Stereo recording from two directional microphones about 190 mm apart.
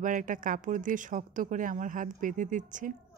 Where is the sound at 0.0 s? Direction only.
45° right (ahead or behind).